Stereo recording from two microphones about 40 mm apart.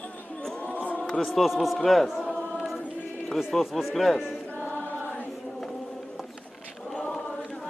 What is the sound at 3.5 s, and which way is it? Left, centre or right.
Speech, centre.